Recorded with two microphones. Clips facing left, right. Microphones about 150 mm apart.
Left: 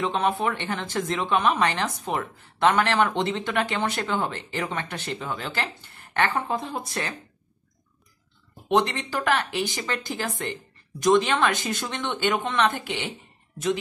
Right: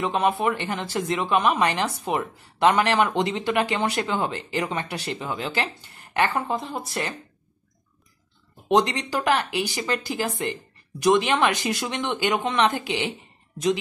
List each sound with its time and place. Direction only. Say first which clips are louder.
0.0 s a woman's voice: right 2 dB; 10° right (ahead or behind)
6.4 s speech: right 1 dB; centre (ahead or behind)
8.6 s a woman's voice: right 2 dB; 15° right (ahead or behind)
13.1 s a sound: right 2 dB; 15° right (ahead or behind)